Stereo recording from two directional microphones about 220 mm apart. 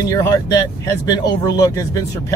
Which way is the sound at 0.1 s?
15° left (ahead or behind).